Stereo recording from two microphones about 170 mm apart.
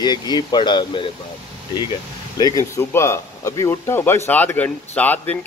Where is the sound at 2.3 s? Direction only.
20° left (ahead or behind).